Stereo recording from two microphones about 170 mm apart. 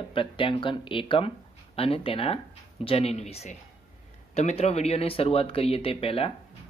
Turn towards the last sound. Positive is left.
turn(degrees=35)  # may be behind; listen again after turning